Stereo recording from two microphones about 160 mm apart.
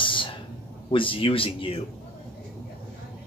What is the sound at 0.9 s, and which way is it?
Speech, 35° left (ahead or behind).